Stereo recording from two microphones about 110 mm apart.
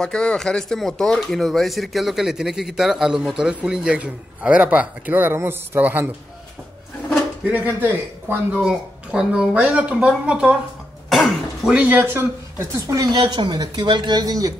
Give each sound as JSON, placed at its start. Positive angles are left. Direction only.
{"t": 0.0, "sound": "speech", "side_deg": 10}
{"t": 7.6, "sound": "speech", "side_deg": -15}
{"t": 11.1, "sound": "cough", "side_deg": 0}
{"t": 11.7, "sound": "speech", "side_deg": -15}
{"t": 13.1, "sound": "speech", "side_deg": -45}